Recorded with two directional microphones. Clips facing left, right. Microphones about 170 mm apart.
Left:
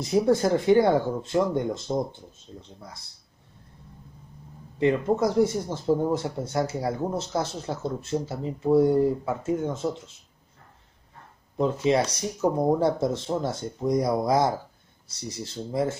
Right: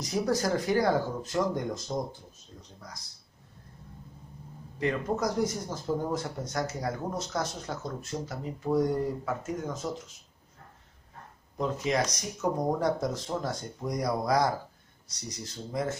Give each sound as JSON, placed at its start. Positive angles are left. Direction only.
{"t": 0.0, "sound": "speech", "side_deg": 25}
{"t": 4.7, "sound": "speech", "side_deg": 25}
{"t": 11.5, "sound": "speech", "side_deg": 25}